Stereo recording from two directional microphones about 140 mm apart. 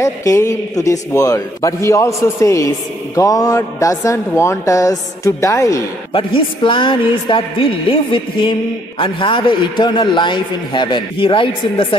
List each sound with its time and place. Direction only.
0.0 s a man's voice: 20° left (ahead or behind)
6.1 s a woman's voice: 40° left (ahead or behind)